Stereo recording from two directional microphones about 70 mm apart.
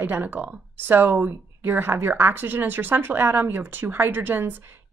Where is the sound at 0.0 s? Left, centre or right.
Right.